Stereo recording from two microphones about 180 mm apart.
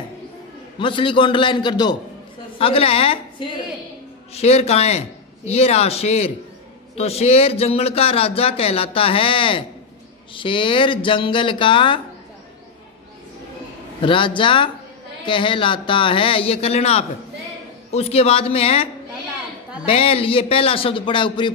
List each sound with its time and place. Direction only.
0.7 s a man's voice: 30° left (ahead or behind)
14.0 s a man's voice: 30° left (ahead or behind)
19.9 s a man's voice: 30° left (ahead or behind)